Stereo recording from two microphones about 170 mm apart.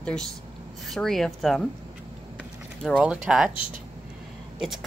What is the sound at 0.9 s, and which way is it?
Speech, centre (ahead or behind).